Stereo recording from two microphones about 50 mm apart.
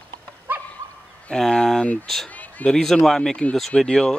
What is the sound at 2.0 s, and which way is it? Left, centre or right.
Speech, centre.